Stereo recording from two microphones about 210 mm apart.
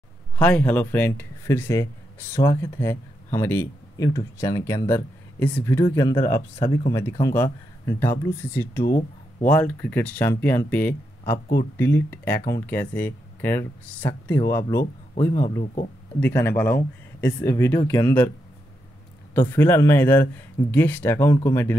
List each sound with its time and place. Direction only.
0.4 s speech: 5° left (ahead or behind)
15.3 s speech: 40° left (ahead or behind)
16.2 s speech: 10° left (ahead or behind)
19.3 s speech: 10° left (ahead or behind)